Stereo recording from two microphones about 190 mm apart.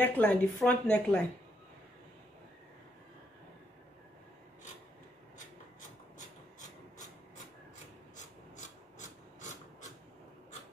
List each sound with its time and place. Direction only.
0.0 s a woman's voice: 10° left (ahead or behind)
6.1 s rub: 40° left (ahead or behind)
8.2 s filing: 40° left (ahead or behind)